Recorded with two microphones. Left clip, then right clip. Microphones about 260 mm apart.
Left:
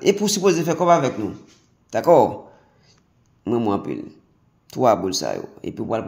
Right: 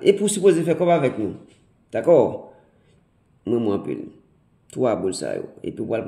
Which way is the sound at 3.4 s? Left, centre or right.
Centre.